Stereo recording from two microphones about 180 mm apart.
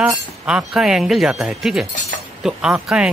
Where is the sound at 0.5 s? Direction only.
5° right (ahead or behind).